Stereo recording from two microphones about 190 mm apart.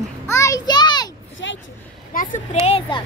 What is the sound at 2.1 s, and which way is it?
Speech, 45° left (ahead or behind).